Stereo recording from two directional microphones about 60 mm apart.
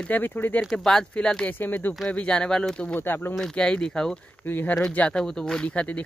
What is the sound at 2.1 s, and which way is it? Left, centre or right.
Speech, centre.